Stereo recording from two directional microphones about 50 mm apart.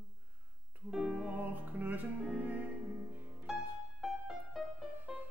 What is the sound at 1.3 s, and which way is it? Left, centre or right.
Music, right.